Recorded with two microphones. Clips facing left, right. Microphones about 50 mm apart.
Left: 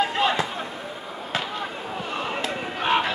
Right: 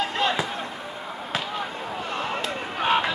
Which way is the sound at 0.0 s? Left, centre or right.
Centre.